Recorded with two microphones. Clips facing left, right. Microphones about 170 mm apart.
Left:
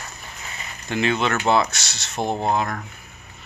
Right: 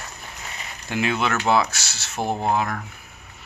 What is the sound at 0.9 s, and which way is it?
Speech, 10° right (ahead or behind).